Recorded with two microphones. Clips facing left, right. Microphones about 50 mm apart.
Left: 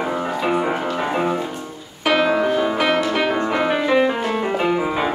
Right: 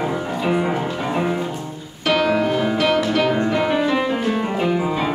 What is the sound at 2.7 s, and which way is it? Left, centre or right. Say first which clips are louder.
Music: right 1 dB; left.